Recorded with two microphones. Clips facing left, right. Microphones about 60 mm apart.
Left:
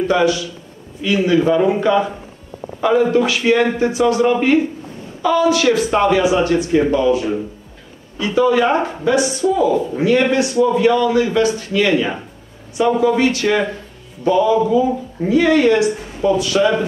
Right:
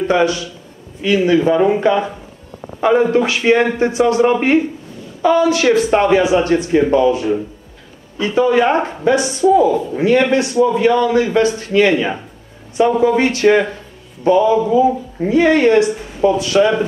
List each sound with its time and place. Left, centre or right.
0.1 s speech: right
9.4 s a woman's voice: centre
9.9 s speech: right